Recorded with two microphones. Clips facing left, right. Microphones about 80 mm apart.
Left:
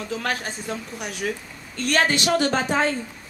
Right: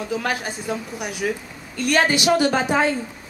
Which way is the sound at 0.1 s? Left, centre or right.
Centre.